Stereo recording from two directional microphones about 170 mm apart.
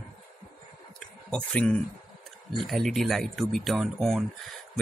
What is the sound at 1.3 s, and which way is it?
Speech, 5° left (ahead or behind).